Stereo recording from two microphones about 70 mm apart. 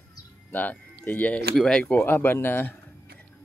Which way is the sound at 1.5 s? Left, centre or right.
Centre.